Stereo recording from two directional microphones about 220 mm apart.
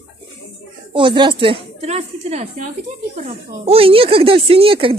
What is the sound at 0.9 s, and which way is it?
Speech, 20° right (ahead or behind).